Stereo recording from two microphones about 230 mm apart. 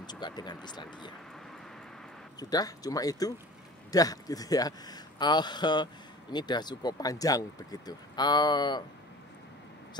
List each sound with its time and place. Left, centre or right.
0.0 s speech: centre
2.5 s speech: centre